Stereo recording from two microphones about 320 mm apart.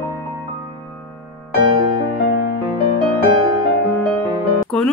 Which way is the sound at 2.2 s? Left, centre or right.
Left.